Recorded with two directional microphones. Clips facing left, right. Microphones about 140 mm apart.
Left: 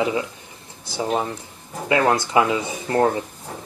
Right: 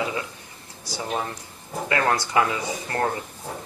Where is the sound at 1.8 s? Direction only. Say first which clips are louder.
Left 5 dB; 20° left (ahead or behind).